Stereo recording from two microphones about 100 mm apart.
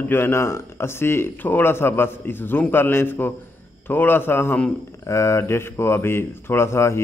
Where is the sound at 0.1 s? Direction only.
25° left (ahead or behind).